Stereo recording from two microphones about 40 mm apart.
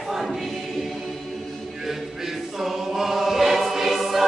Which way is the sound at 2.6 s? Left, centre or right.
Centre.